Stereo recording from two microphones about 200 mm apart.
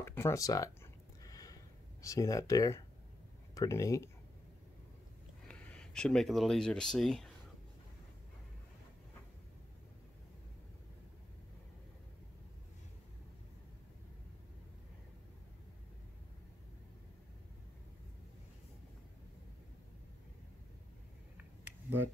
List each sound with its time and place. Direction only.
0.0 s speech: 10° left (ahead or behind)
1.2 s a sound: 15° left (ahead or behind)
3.5 s speech: 15° left (ahead or behind)
5.5 s speech: 5° left (ahead or behind)